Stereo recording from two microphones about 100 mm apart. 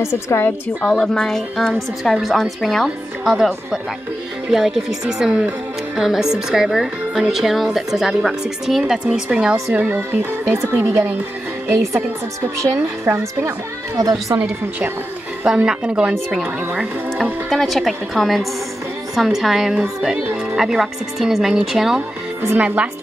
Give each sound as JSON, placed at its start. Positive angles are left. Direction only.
{"t": 0.0, "sound": "a woman's voice", "side_deg": 25}
{"t": 0.8, "sound": "a woman's voice", "side_deg": 5}
{"t": 13.9, "sound": "a woman's voice", "side_deg": -40}
{"t": 15.4, "sound": "a woman's voice", "side_deg": -10}